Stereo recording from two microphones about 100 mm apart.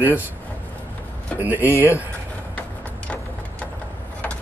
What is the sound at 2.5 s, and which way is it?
Music, 15° left (ahead or behind).